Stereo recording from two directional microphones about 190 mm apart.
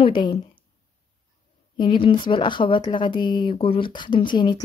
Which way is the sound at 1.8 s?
25° left (ahead or behind).